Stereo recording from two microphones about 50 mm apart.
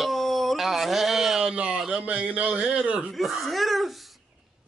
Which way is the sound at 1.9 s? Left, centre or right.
Right.